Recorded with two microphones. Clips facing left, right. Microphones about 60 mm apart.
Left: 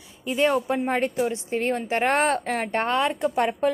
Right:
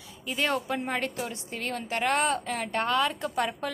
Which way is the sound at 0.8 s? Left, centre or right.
Left.